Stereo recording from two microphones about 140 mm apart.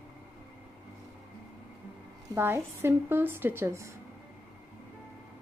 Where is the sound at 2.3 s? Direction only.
15° right (ahead or behind).